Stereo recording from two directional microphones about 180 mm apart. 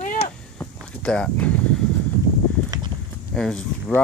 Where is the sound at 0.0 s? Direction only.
45° left (ahead or behind).